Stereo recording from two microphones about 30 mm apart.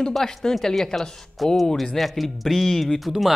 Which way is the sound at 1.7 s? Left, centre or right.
Centre.